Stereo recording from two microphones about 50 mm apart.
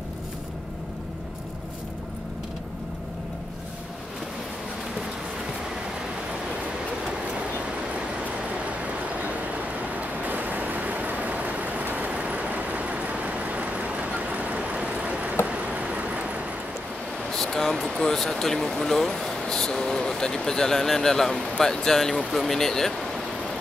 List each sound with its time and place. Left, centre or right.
8.5 s vehicle: right
15.4 s a sound: right
17.2 s speech: centre